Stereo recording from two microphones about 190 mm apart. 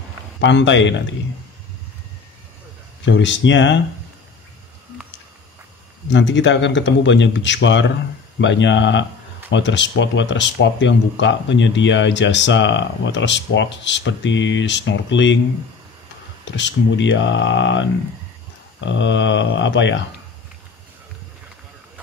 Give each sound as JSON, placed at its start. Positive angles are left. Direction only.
{"t": 0.4, "sound": "speech", "side_deg": 70}
{"t": 3.1, "sound": "speech", "side_deg": 70}
{"t": 6.0, "sound": "speech", "side_deg": 75}
{"t": 16.4, "sound": "speech", "side_deg": 70}